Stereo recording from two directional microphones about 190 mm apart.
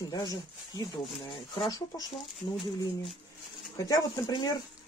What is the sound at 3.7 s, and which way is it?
Speech, 20° left (ahead or behind).